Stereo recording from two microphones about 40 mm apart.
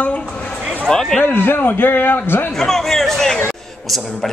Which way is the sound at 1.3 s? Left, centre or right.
Left.